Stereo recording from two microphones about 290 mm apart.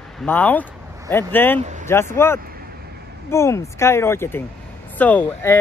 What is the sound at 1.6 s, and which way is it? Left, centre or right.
Speech, right.